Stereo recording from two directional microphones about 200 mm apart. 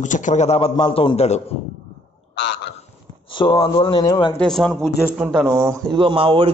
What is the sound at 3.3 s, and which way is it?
Speech, 25° left (ahead or behind).